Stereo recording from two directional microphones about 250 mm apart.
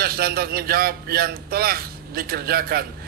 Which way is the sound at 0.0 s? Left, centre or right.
Right.